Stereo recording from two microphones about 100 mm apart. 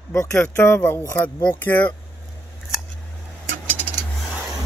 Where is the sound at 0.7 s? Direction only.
15° left (ahead or behind).